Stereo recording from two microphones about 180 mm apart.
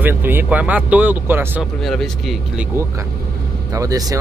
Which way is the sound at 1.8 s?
Centre (ahead or behind).